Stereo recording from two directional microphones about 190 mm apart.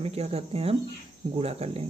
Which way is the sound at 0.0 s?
30° right (ahead or behind).